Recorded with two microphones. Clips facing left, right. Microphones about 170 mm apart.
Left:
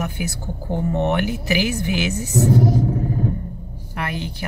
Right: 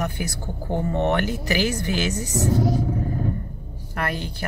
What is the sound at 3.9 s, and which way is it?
Speech, 10° left (ahead or behind).